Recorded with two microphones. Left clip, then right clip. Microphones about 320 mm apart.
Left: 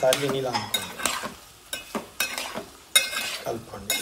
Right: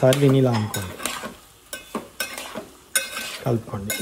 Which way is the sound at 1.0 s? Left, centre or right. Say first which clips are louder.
Left 1 dB; centre.